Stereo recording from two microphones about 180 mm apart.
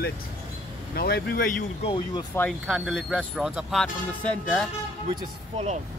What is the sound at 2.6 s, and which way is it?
Speech, 5° right (ahead or behind).